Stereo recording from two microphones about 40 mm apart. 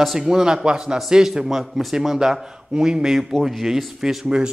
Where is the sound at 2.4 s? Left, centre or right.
Centre.